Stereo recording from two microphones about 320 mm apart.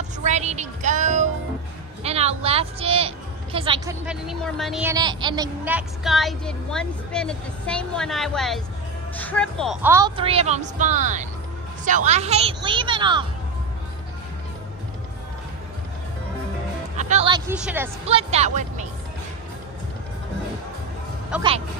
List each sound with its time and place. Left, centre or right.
0.2 s a woman's voice: right
4.0 s a woman's voice: centre
16.9 s a woman's voice: right
21.3 s a woman's voice: centre